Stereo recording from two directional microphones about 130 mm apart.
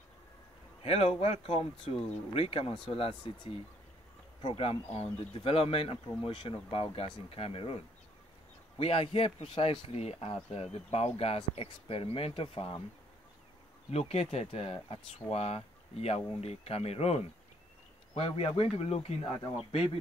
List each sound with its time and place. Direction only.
0.8 s speech: 50° left (ahead or behind)
13.8 s speech: 50° left (ahead or behind)